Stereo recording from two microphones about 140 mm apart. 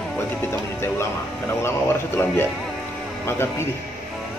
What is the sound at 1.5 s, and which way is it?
Speech, 20° left (ahead or behind).